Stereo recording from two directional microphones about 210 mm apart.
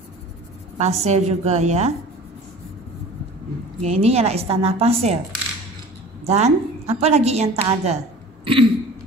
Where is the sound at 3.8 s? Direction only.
30° right (ahead or behind).